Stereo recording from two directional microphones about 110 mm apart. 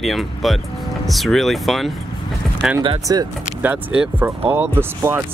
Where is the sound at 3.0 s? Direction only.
35° right (ahead or behind).